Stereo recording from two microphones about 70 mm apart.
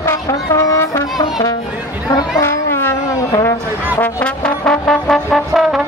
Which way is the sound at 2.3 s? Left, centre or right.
Left.